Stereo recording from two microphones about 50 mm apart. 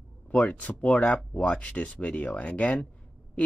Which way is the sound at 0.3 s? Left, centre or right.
Left.